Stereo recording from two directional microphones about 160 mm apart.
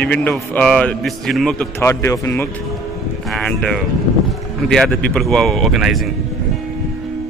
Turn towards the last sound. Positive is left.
turn(degrees=0)  # may be behind; listen again after turning